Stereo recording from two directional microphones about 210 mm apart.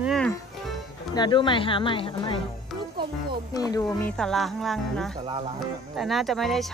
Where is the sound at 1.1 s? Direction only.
20° left (ahead or behind).